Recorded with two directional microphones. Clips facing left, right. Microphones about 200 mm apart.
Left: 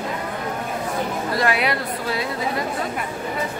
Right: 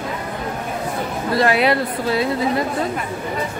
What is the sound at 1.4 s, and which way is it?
Speech, 30° right (ahead or behind).